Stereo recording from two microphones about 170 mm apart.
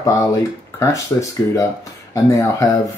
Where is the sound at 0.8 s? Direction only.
20° left (ahead or behind).